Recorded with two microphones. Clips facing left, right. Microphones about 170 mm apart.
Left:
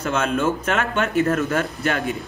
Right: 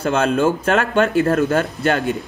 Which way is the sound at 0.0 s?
30° right (ahead or behind).